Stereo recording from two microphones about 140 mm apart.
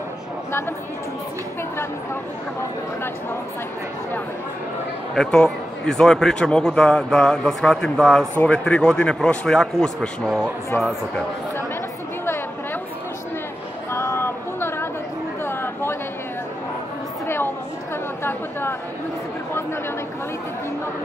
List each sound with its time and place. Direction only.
0.5 s a woman's voice: 15° left (ahead or behind)
5.1 s speech: 5° left (ahead or behind)
13.9 s a sound: 15° left (ahead or behind)
18.2 s chatter: 15° left (ahead or behind)